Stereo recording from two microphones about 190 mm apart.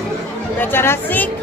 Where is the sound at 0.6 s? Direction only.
10° left (ahead or behind).